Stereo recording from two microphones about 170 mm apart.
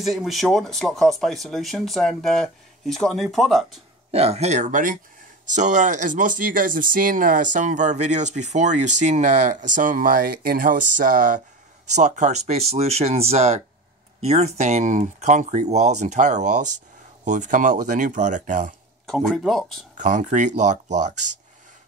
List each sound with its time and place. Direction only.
0.0 s speech: centre (ahead or behind)
4.1 s speech: 35° right (ahead or behind)
19.0 s speech: centre (ahead or behind)
20.0 s speech: 45° right (ahead or behind)